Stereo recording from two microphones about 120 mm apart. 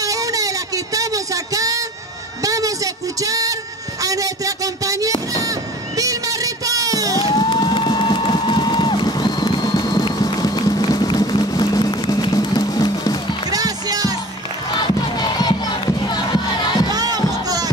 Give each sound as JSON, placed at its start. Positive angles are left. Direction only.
{"t": 0.0, "sound": "a sound", "side_deg": -30}
{"t": 7.2, "sound": "crowd", "side_deg": 40}
{"t": 13.5, "sound": "music", "side_deg": -30}
{"t": 14.8, "sound": "crowd", "side_deg": 35}
{"t": 16.9, "sound": "music", "side_deg": -30}